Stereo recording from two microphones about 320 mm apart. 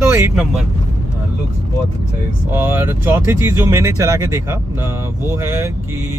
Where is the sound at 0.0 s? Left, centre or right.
Centre.